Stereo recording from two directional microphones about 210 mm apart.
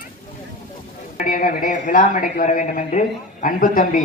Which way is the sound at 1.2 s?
40° left (ahead or behind).